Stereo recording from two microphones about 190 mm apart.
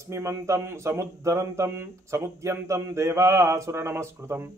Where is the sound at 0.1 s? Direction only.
15° right (ahead or behind).